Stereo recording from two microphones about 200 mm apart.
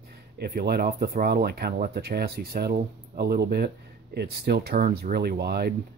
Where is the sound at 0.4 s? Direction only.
50° right (ahead or behind).